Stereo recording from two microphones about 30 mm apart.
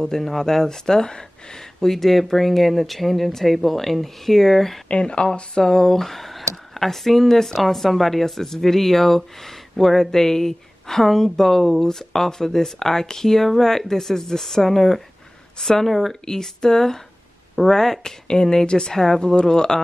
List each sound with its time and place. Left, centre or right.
0.4 s speech: centre
1.8 s speech: centre
5.0 s speech: left
5.6 s speech: left
6.0 s speech: centre
16.3 s speech: centre